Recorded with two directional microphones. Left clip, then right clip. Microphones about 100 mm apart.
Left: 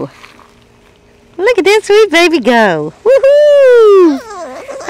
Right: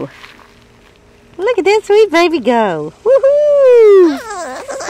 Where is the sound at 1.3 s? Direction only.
25° left (ahead or behind).